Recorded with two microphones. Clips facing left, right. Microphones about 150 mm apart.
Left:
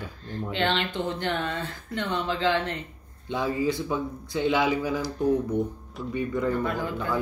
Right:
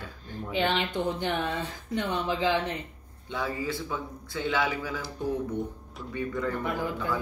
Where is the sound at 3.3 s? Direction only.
20° left (ahead or behind).